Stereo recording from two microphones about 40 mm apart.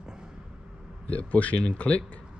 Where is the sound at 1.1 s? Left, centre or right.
Left.